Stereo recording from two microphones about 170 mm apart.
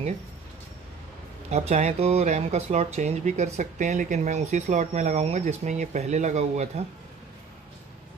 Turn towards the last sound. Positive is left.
turn(degrees=-40)  # may be behind; listen again after turning